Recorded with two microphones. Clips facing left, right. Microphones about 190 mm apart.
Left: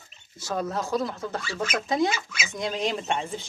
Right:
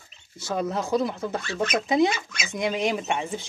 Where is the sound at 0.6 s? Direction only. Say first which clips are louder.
Right 3 dB; 15° right (ahead or behind).